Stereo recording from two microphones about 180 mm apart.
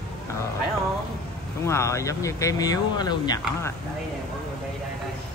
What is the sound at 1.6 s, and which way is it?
Speech, 15° left (ahead or behind).